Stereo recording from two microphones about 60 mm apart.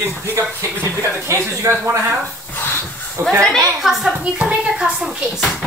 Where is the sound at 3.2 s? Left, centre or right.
Right.